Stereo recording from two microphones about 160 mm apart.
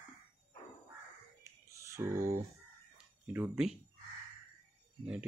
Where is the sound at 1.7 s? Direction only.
20° right (ahead or behind).